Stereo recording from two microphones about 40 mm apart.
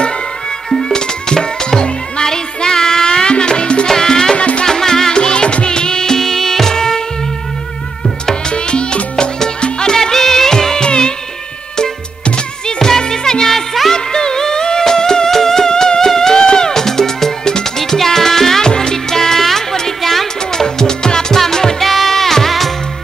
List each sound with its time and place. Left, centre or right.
0.7 s music: centre
4.4 s music: left
4.6 s music: centre
8.5 s music: left
9.9 s music of bollywood: centre
12.6 s music: centre
13.9 s music: centre
20.6 s music: centre
21.8 s music: centre